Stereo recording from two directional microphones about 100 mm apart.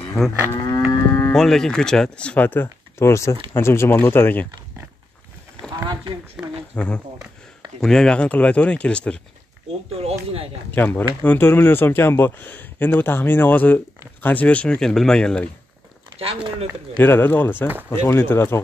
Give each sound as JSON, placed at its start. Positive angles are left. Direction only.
{"t": 0.7, "sound": "livestock", "side_deg": 25}
{"t": 1.3, "sound": "speech", "side_deg": 5}
{"t": 6.4, "sound": "speech", "side_deg": -10}
{"t": 6.7, "sound": "speech", "side_deg": 10}
{"t": 9.9, "sound": "speech", "side_deg": -85}
{"t": 10.7, "sound": "speech", "side_deg": 20}
{"t": 16.4, "sound": "speech", "side_deg": -55}
{"t": 17.0, "sound": "speech", "side_deg": 20}